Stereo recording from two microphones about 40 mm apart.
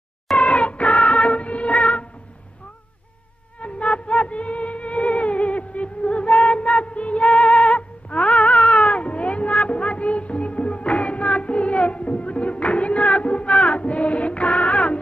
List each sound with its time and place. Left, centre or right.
0.4 s music: left
3.5 s music: left